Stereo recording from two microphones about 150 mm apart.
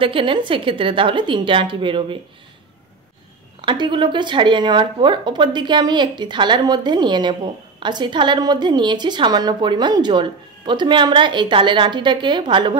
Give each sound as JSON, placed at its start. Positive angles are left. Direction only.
{"t": 0.0, "sound": "a woman's voice", "side_deg": -35}
{"t": 3.6, "sound": "a woman's voice", "side_deg": -30}